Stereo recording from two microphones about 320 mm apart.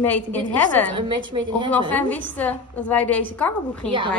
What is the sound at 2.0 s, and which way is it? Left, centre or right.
A woman's voice, centre.